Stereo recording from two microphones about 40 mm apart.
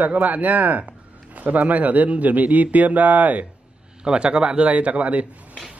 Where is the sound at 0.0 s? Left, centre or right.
Right.